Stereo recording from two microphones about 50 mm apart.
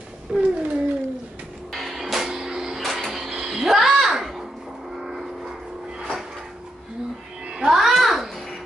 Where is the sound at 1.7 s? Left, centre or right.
Centre.